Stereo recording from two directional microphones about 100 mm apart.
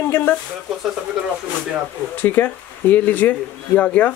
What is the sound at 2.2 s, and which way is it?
Speech, 20° left (ahead or behind).